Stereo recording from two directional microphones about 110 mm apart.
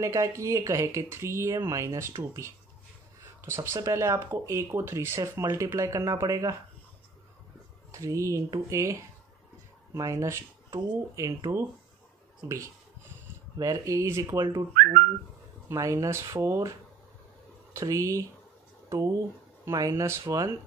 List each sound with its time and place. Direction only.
0.0 s speech: 25° right (ahead or behind)
3.5 s speech: 30° right (ahead or behind)
7.9 s speech: 30° right (ahead or behind)
9.9 s speech: 30° right (ahead or behind)
15.7 s speech: 25° right (ahead or behind)
17.7 s speech: 30° right (ahead or behind)